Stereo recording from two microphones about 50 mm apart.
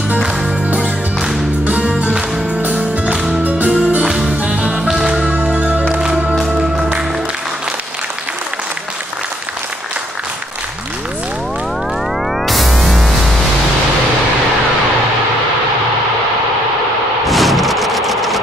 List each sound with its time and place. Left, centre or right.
0.7 s music: right
2.6 s music: right
5.9 s music: centre
12.4 s music: centre
17.3 s a sound: centre